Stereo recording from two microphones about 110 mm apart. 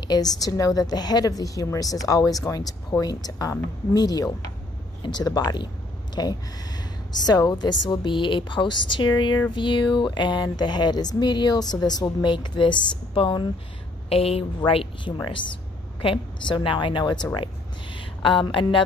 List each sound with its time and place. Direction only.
0.1 s a woman's voice: 35° left (ahead or behind)
14.0 s a woman's voice: 60° left (ahead or behind)